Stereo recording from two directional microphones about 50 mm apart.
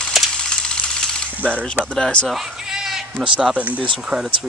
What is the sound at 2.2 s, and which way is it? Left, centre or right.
Bleat, centre.